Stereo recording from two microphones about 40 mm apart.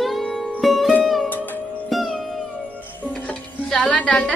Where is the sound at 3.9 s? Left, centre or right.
Left.